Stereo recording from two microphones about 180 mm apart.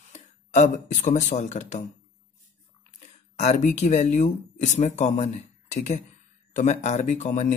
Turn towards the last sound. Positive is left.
turn(degrees=40)  # may be behind; listen again after turning